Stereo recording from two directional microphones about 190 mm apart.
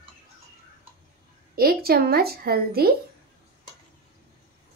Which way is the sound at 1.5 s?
50° right (ahead or behind).